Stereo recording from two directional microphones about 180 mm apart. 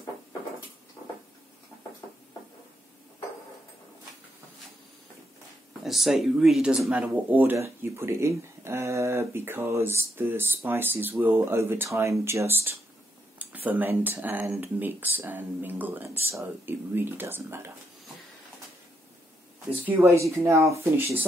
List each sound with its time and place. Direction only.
5.9 s speech: centre (ahead or behind)
20.0 s speech: 15° right (ahead or behind)